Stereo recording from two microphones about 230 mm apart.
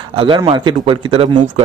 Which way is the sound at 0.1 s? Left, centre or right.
Right.